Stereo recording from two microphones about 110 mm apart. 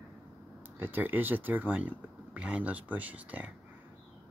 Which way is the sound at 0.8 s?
15° right (ahead or behind).